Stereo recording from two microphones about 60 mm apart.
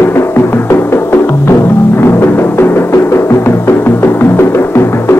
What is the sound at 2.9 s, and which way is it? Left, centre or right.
Music, left.